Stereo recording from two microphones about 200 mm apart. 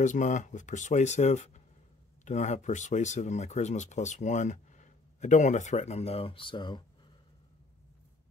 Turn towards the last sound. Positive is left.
turn(degrees=25)  # may be behind; listen again after turning